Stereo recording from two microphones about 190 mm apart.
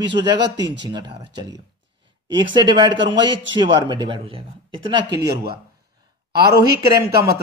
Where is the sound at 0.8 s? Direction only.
20° right (ahead or behind).